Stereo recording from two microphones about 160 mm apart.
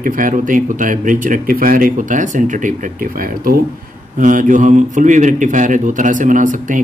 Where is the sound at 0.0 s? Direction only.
55° right (ahead or behind).